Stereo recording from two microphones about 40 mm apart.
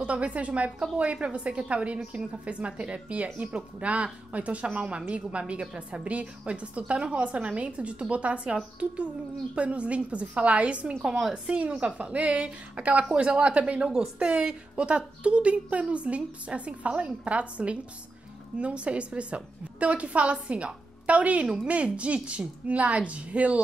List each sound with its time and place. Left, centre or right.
0.0 s a woman's voice: right
11.1 s a woman's voice: centre
11.3 s a woman's voice: right
13.8 s a woman's voice: centre; by 23.6 s right